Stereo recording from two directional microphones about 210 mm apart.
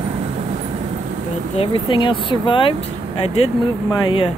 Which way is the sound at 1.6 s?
25° left (ahead or behind).